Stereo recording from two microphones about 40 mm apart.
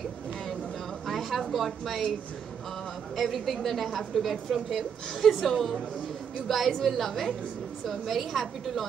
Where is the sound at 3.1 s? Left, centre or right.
Centre.